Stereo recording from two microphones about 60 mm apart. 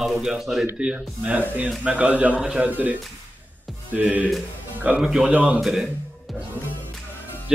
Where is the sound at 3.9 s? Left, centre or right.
Right.